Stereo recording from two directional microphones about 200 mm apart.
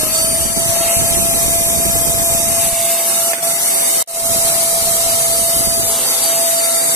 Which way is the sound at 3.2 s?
15° left (ahead or behind).